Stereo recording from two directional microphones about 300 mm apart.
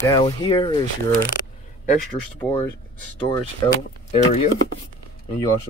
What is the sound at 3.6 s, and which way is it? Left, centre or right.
Speech, centre.